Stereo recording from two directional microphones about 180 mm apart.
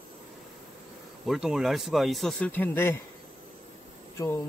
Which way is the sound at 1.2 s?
Centre (ahead or behind).